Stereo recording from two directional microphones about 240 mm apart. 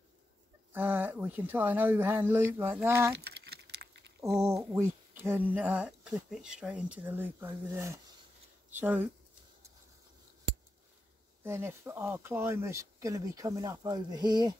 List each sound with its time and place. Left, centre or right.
0.7 s speech: centre
3.2 s a sound: right
4.2 s speech: centre
11.4 s speech: centre